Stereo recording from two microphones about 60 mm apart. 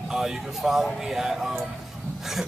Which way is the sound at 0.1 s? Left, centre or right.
Centre.